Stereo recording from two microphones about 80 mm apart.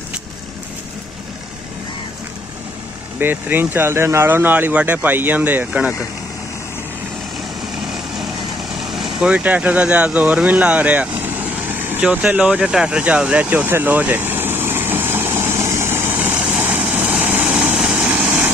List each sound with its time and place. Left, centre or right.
3.2 s speech: right
8.7 s vehicle: centre
9.3 s speech: centre
12.1 s vehicle: centre